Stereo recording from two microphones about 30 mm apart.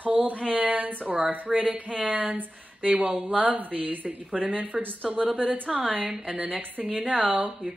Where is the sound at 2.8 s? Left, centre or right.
Right.